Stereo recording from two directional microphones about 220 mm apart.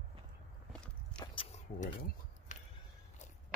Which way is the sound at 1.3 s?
25° left (ahead or behind).